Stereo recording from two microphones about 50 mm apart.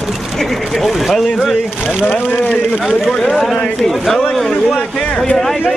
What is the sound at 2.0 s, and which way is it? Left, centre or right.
Speech, left.